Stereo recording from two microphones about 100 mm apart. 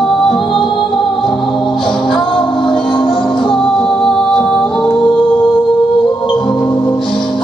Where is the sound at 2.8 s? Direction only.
55° left (ahead or behind).